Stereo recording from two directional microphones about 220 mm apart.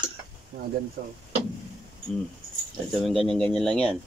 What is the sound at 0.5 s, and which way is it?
Speech, 35° right (ahead or behind).